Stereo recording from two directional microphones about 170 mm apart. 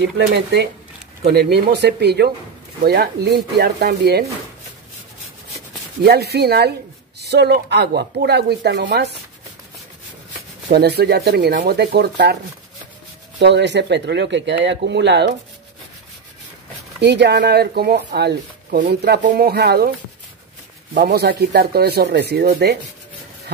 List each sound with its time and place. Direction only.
0.0 s speech: 75° right (ahead or behind)
6.0 s speech: 70° right (ahead or behind)
10.7 s speech: 75° right (ahead or behind)
13.4 s speech: 90° right
17.0 s speech: 90° right; by 19.9 s 70° right (ahead or behind)
20.9 s speech: 65° right (ahead or behind)